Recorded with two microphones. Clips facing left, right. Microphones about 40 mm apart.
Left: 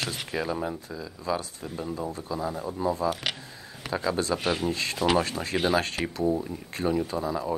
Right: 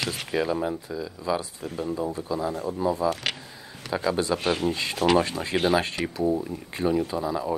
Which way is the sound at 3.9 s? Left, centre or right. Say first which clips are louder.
Right 2 dB; centre.